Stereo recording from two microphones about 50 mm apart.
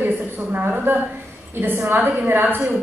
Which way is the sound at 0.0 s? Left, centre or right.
Right.